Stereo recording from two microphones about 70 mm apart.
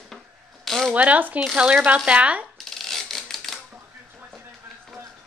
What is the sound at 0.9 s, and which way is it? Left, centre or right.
Speech, right.